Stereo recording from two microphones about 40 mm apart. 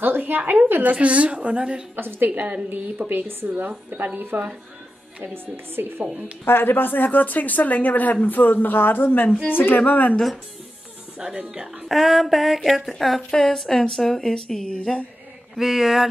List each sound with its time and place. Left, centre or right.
0.0 s speech: right
0.8 s a woman's voice: right
2.0 s speech: right
2.3 s a woman's voice: right
3.1 s a woman's voice: right
5.2 s speech: right
6.4 s speech: left
9.8 s speech: left
11.9 s a sound: centre
13.3 s speech: centre
15.5 s a sound: centre